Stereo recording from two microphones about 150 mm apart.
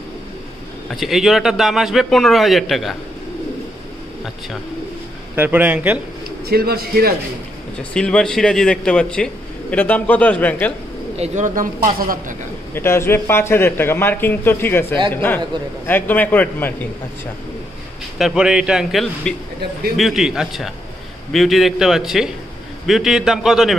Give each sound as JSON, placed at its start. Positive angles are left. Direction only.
{"t": 0.8, "sound": "a man's voice", "side_deg": 0}
{"t": 5.3, "sound": "speech", "side_deg": -10}
{"t": 6.4, "sound": "a man's voice", "side_deg": -90}
{"t": 7.9, "sound": "a man's voice", "side_deg": 5}
{"t": 11.1, "sound": "speech", "side_deg": -55}
{"t": 12.7, "sound": "a man's voice", "side_deg": 15}
{"t": 18.1, "sound": "a man's voice", "side_deg": -5}